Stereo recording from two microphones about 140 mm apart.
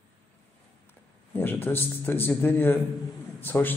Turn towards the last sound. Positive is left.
turn(degrees=15)  # may be behind; listen again after turning